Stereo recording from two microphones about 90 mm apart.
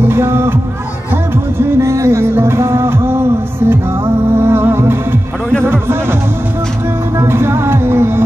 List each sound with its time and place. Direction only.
0.0 s speech: 25° right (ahead or behind)
1.1 s music: 30° right (ahead or behind)
5.6 s a sound: 25° right (ahead or behind)
7.2 s music: 30° right (ahead or behind)